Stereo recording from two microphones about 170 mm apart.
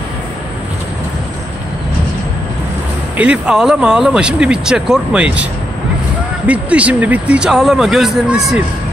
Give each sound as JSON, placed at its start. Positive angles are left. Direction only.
{"t": 3.2, "sound": "speech", "side_deg": -5}